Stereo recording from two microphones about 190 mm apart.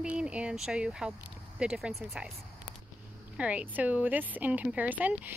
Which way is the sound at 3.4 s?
5° right (ahead or behind).